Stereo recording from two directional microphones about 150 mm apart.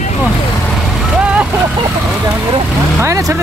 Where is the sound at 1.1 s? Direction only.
5° right (ahead or behind).